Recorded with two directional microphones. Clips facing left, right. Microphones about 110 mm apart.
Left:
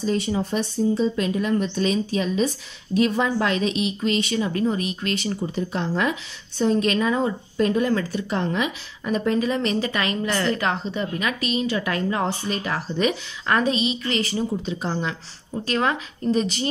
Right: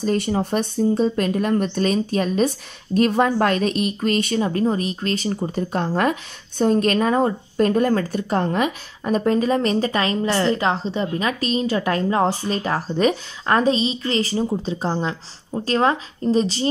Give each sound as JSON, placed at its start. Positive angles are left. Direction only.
{"t": 0.0, "sound": "speech", "side_deg": -50}